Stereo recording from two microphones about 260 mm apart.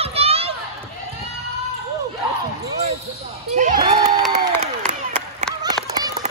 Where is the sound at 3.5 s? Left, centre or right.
Right.